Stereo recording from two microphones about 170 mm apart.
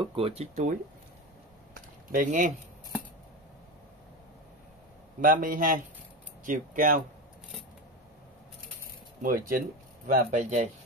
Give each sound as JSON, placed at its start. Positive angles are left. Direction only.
{"t": 0.0, "sound": "speech", "side_deg": -35}
{"t": 2.1, "sound": "speech", "side_deg": -50}
{"t": 5.2, "sound": "speech", "side_deg": -55}
{"t": 9.2, "sound": "speech", "side_deg": -55}